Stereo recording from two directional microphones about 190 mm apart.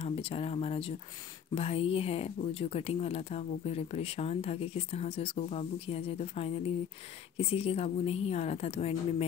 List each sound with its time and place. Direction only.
0.0 s speech: 30° left (ahead or behind)